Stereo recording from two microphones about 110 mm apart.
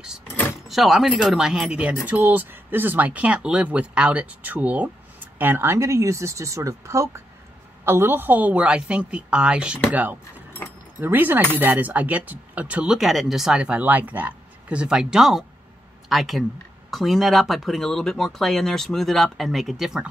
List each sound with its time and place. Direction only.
0.7 s speech: centre (ahead or behind)